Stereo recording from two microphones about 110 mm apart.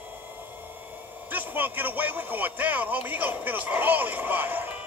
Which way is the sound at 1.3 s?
15° right (ahead or behind).